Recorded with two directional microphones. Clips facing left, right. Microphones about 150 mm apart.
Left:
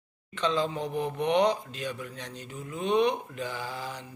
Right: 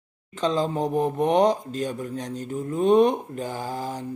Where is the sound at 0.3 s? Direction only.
40° right (ahead or behind).